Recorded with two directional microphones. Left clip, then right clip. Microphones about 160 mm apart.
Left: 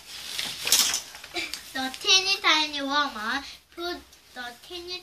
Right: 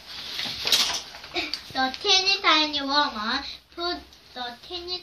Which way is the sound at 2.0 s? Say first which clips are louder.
Even; 15° right (ahead or behind).